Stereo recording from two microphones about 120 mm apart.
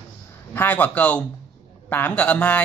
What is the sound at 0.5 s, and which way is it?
A man's voice, 15° left (ahead or behind).